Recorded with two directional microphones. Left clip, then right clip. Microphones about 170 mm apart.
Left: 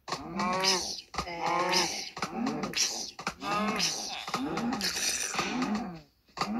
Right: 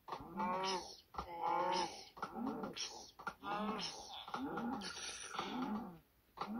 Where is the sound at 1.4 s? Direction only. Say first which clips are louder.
Left 9 dB; 40° left (ahead or behind).